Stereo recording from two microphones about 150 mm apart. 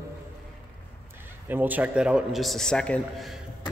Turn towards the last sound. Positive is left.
turn(degrees=5)  # may be behind; listen again after turning